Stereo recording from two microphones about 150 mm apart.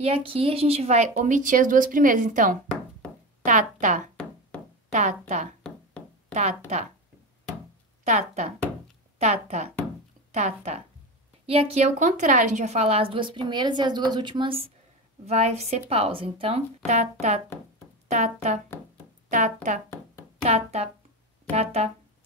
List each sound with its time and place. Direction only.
0.0 s speech: 40° right (ahead or behind); by 2.6 s 60° right (ahead or behind)
3.8 s speech: 55° right (ahead or behind)
5.6 s a sound: 10° left (ahead or behind)
8.0 s a woman's voice: 50° right (ahead or behind); by 14.7 s 35° right (ahead or behind)
15.2 s a woman's voice: 45° right (ahead or behind)
20.4 s speech: 45° right (ahead or behind)